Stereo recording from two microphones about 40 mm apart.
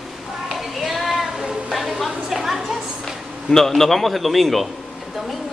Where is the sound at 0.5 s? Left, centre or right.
Centre.